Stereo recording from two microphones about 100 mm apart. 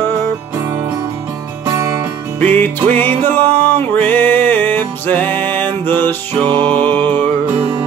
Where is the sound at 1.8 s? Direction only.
35° right (ahead or behind).